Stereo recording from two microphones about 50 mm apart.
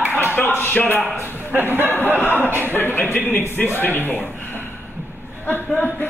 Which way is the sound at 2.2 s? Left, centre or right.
Left.